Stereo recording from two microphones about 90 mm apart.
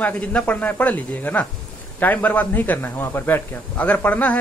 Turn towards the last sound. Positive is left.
turn(degrees=15)  # may be behind; listen again after turning